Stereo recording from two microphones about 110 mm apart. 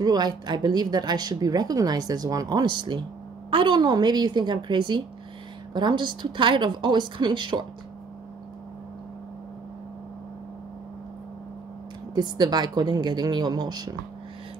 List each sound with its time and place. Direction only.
0.0 s a woman's voice: 40° right (ahead or behind)
12.2 s a woman's voice: 40° right (ahead or behind)